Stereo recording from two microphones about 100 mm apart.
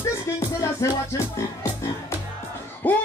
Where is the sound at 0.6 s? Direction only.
30° left (ahead or behind).